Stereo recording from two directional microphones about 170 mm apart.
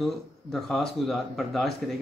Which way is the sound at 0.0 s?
Centre (ahead or behind).